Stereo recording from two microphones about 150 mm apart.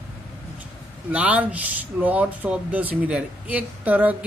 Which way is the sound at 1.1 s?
10° right (ahead or behind).